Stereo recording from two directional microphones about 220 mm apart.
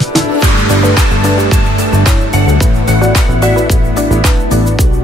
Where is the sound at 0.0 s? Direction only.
Centre (ahead or behind).